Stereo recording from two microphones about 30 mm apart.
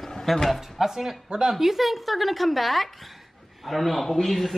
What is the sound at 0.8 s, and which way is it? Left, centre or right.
Speech, centre.